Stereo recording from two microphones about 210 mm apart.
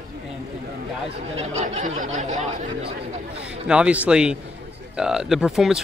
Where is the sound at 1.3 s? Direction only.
30° right (ahead or behind).